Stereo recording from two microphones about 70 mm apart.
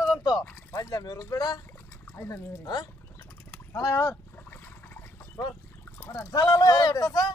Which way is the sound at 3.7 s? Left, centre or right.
Left.